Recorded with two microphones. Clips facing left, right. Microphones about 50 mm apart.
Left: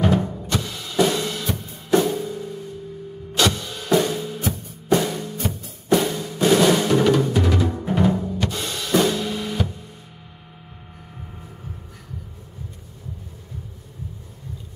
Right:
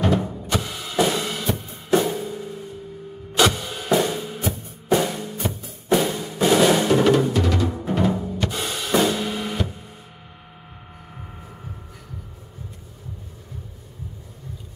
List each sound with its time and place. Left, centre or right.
0.0 s drum: centre
0.5 s music: centre
3.3 s drum kit: centre
3.9 s music: centre
7.3 s music: centre
8.5 s drum kit: centre